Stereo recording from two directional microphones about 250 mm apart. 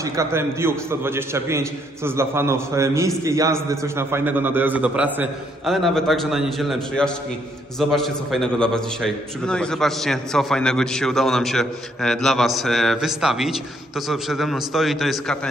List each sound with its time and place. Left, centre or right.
0.0 s a man's voice: centre